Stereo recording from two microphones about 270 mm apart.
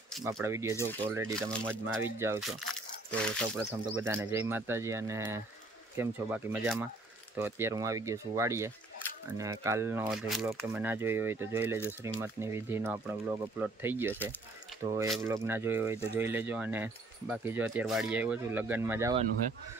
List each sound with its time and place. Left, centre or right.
0.2 s speech: centre
0.7 s speech: centre
2.0 s speech: centre
3.5 s speech: centre